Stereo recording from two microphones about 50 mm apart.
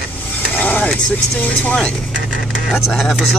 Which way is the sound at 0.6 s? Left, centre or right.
Left.